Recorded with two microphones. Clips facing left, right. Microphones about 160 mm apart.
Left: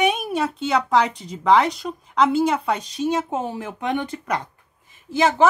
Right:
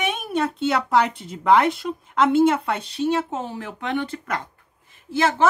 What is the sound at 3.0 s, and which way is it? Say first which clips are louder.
Speech: right 1 dB; 10° left (ahead or behind).